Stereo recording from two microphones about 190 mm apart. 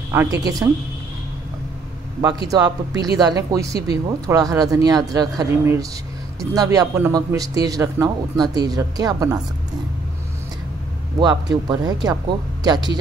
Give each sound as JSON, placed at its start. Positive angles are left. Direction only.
{"t": 0.1, "sound": "a man's voice", "side_deg": -15}
{"t": 2.5, "sound": "a man's voice", "side_deg": -20}
{"t": 11.1, "sound": "a man's voice", "side_deg": -20}